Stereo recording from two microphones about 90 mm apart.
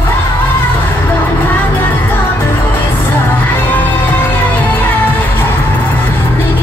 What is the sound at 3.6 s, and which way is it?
Music, 20° left (ahead or behind).